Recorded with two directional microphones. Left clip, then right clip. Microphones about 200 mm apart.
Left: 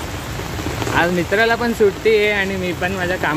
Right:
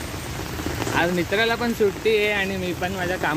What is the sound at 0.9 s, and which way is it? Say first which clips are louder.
Speech: left 5 dB; centre (ahead or behind).